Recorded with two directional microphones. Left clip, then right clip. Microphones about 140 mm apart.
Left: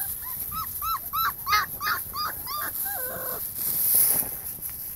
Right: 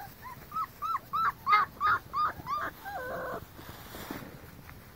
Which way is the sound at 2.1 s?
Centre (ahead or behind).